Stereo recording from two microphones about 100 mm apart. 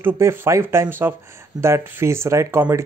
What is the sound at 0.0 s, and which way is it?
Speech, 25° right (ahead or behind).